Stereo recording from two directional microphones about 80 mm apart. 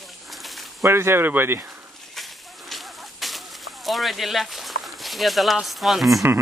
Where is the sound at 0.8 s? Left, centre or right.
Right.